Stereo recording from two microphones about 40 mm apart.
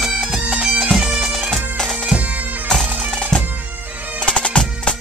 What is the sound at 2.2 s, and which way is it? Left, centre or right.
Bagpipes, right.